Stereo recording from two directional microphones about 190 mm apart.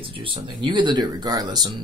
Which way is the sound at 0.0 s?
30° right (ahead or behind).